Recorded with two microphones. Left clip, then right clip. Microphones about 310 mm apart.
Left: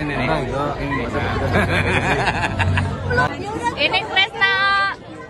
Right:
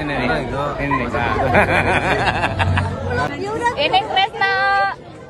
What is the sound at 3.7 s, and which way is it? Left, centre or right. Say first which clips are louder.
Vehicle: even; centre.